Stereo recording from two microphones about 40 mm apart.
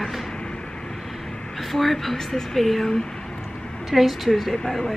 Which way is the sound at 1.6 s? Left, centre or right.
Centre.